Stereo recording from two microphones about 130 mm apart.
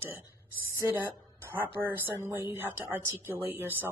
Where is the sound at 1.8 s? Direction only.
15° right (ahead or behind).